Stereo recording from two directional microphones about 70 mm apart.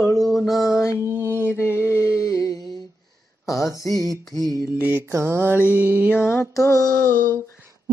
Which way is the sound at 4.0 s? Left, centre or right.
Right.